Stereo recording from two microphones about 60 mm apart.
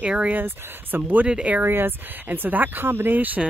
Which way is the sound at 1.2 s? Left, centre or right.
Centre.